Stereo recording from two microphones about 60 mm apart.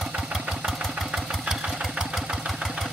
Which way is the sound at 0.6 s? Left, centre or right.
Centre.